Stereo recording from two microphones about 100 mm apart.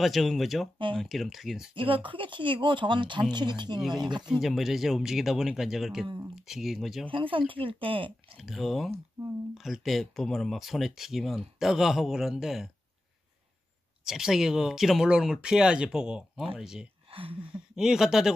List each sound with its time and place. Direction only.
0.0 s speech: centre (ahead or behind)
1.8 s speech: 60° right (ahead or behind)
4.3 s speech: centre (ahead or behind)
7.1 s speech: 60° right (ahead or behind)
8.4 s speech: centre (ahead or behind)
14.0 s speech: 5° right (ahead or behind)
17.1 s a sound: 65° right (ahead or behind)
17.4 s speech: 10° right (ahead or behind)